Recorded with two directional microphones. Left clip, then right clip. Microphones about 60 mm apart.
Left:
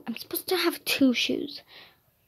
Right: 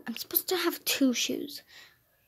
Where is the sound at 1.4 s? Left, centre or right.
Right.